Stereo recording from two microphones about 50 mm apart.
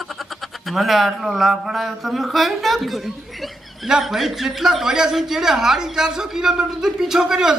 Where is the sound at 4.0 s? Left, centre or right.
Centre.